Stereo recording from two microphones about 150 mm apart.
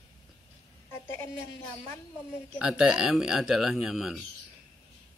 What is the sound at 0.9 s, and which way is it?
Speech, 15° left (ahead or behind).